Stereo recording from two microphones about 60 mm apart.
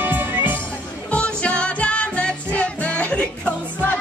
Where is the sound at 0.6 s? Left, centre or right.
Centre.